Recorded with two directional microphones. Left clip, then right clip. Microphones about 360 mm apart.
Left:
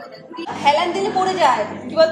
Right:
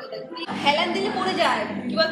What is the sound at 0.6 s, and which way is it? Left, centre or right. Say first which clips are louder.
A woman's voice: left 5 dB; left.